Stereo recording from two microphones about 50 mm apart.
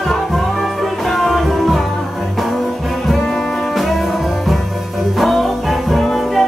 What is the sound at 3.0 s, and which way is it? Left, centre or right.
Music, centre.